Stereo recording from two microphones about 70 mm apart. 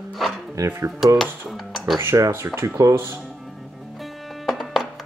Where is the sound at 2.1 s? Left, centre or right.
Right.